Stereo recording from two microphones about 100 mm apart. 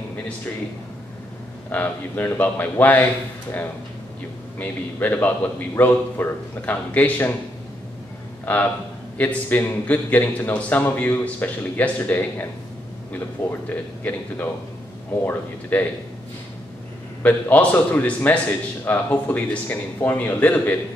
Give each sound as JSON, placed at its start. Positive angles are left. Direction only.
{"t": 1.7, "sound": "a man's voice", "side_deg": 20}
{"t": 4.6, "sound": "a man's voice", "side_deg": 15}
{"t": 8.5, "sound": "a man's voice", "side_deg": 15}
{"t": 17.2, "sound": "a man's voice", "side_deg": 15}